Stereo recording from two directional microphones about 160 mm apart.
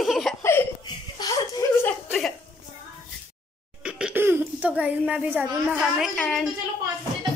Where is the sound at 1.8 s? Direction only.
5° left (ahead or behind).